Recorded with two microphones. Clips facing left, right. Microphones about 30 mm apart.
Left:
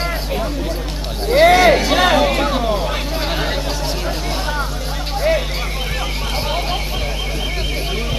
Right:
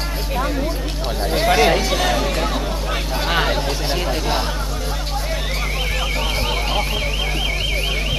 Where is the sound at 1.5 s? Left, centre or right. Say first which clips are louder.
Left 4 dB; centre.